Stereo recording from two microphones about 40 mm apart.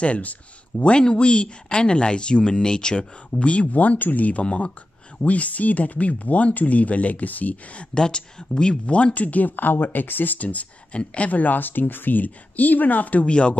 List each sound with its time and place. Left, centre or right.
0.0 s speech: left
7.9 s speech: left
8.8 s speech: left
13.3 s speech: left